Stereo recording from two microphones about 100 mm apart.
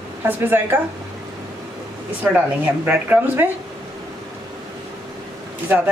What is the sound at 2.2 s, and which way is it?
A woman's voice, 15° right (ahead or behind).